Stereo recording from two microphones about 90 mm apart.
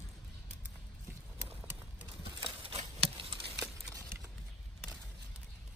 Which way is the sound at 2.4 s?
80° right.